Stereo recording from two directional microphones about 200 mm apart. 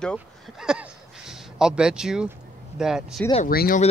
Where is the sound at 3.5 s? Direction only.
45° left (ahead or behind).